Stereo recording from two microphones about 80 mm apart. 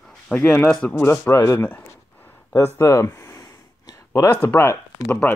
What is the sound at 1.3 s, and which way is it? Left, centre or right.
Speech, left.